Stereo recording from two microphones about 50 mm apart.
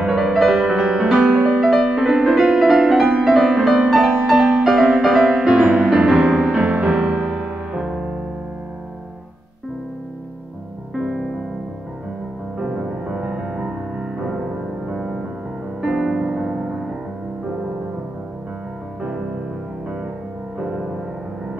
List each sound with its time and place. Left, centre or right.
0.0 s music: centre
6.4 s music: right
6.8 s music: centre
12.5 s music: centre
20.5 s music: centre